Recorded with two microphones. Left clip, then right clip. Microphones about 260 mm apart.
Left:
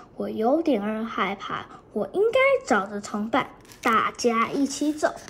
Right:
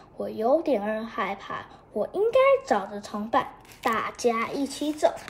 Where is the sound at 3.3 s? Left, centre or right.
Centre.